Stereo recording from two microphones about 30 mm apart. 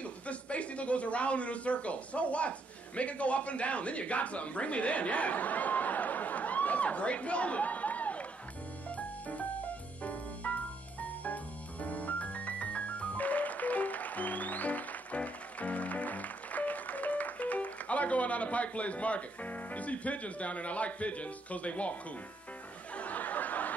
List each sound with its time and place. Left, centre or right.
0.0 s speech: left
11.8 s music: left
22.9 s a sound: left